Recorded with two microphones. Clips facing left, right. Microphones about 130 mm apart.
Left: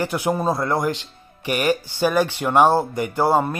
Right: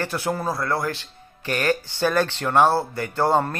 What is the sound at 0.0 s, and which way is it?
Speech, 15° left (ahead or behind).